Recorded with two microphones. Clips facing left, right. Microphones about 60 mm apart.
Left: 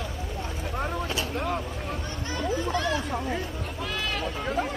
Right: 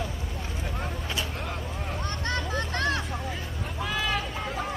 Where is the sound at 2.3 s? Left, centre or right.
Right.